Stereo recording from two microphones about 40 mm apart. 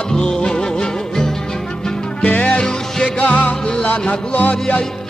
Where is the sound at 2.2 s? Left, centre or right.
Left.